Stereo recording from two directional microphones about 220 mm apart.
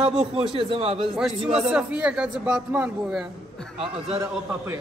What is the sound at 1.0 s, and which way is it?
A man's voice, centre (ahead or behind).